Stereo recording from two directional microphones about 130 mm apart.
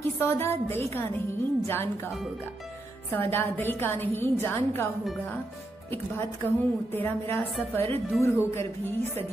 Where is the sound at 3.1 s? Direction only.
15° left (ahead or behind).